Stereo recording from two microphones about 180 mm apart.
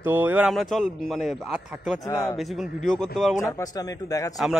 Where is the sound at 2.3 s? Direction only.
Centre (ahead or behind).